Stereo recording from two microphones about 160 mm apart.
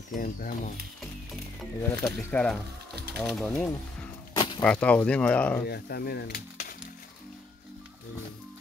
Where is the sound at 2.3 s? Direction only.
5° left (ahead or behind).